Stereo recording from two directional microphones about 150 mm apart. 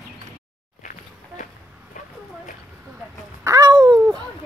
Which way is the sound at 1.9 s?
60° left (ahead or behind).